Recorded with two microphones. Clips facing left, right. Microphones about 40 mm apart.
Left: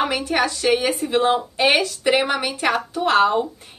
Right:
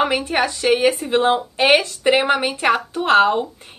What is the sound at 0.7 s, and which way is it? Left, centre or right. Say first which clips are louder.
A woman's voice: right 3 dB; right.